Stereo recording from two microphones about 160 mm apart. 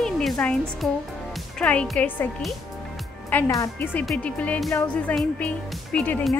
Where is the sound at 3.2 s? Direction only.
15° left (ahead or behind).